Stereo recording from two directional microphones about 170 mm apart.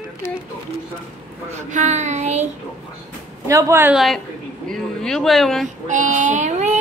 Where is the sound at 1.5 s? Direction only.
45° right (ahead or behind).